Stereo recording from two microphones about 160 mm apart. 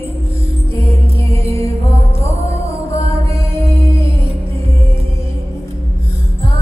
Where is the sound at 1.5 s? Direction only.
20° left (ahead or behind).